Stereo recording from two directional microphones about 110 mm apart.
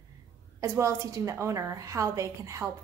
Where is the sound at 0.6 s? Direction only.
30° right (ahead or behind).